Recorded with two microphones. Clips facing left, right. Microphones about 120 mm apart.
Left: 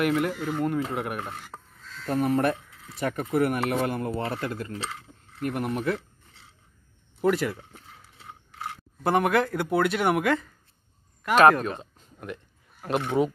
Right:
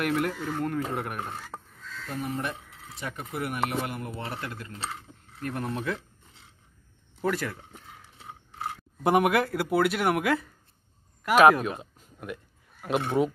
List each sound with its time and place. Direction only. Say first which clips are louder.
0.0 s speech: left 3 dB; centre (ahead or behind)
2.0 s speech: left 9 dB; 60° left (ahead or behind)
3.0 s speech: left 9 dB; 45° left (ahead or behind); by 4.7 s 30° left (ahead or behind)
5.4 s speech: left 4 dB; 15° left (ahead or behind)
7.2 s speech: left 5 dB; 20° left (ahead or behind)
9.0 s speech: even; 10° right (ahead or behind)